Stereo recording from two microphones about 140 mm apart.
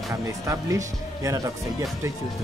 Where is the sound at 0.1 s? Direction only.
20° right (ahead or behind).